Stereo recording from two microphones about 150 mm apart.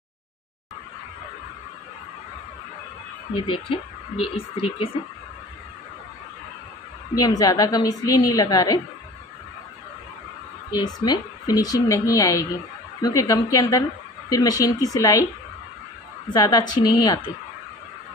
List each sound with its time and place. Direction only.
3.3 s speech: 35° left (ahead or behind)
7.2 s speech: 25° left (ahead or behind)
10.7 s speech: 25° left (ahead or behind)
16.3 s speech: 25° left (ahead or behind)